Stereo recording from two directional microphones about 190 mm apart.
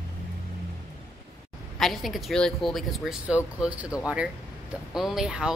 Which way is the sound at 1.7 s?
Centre (ahead or behind).